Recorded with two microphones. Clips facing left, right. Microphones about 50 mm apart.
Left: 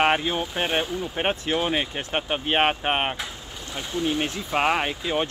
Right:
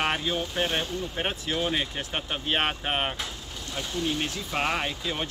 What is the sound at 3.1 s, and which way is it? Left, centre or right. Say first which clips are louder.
Speech: left 2 dB; centre.